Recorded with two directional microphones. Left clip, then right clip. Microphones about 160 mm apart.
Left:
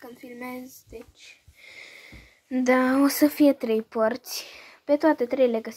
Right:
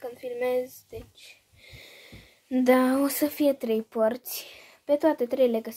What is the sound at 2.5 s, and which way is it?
Speech, centre (ahead or behind).